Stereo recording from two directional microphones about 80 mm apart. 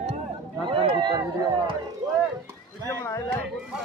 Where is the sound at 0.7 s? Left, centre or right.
Right.